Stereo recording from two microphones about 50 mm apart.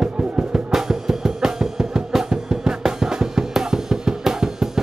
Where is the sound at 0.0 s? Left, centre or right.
Centre.